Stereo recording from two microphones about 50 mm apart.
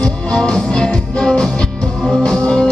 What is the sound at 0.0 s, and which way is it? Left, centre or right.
Music, centre.